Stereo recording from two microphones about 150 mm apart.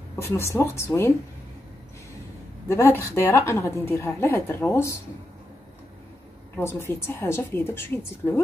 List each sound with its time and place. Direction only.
0.1 s a woman's voice: 15° left (ahead or behind)
2.7 s a woman's voice: 15° left (ahead or behind)
6.5 s a woman's voice: 15° left (ahead or behind)